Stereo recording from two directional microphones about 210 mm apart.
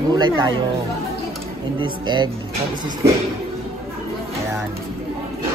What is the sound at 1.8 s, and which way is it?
Speech, 20° right (ahead or behind).